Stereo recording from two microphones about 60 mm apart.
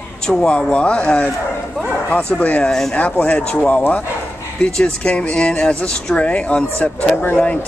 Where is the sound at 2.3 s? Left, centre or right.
Centre.